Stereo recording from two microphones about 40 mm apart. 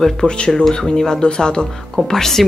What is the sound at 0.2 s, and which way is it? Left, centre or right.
Speech, centre.